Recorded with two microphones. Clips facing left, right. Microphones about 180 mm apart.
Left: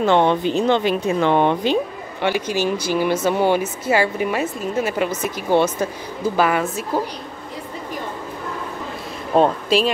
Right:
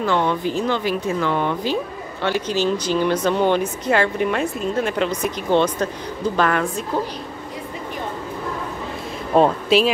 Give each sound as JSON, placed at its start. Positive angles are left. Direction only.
{"t": 0.0, "sound": "speech", "side_deg": 25}
{"t": 9.3, "sound": "speech", "side_deg": 0}